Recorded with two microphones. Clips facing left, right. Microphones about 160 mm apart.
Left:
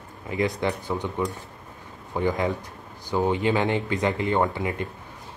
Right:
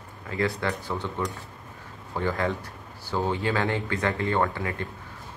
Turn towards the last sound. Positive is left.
turn(degrees=15)  # may be behind; listen again after turning